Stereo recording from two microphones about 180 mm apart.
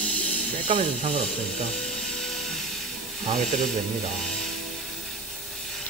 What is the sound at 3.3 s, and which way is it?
Speech, centre (ahead or behind).